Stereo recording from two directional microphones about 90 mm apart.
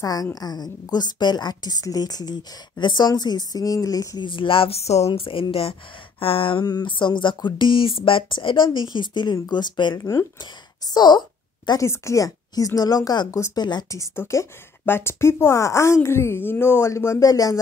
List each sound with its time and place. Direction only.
0.0 s a woman's voice: 45° left (ahead or behind)
4.2 s speech: 70° left (ahead or behind)
6.6 s a woman's voice: 45° left (ahead or behind)
6.9 s speech: 60° left (ahead or behind)
9.9 s a woman's voice: 40° left (ahead or behind)
10.9 s speech: 50° left (ahead or behind)
11.8 s a woman's voice: 35° left (ahead or behind); by 13.8 s 50° left (ahead or behind)
14.1 s a woman's voice: 30° left (ahead or behind)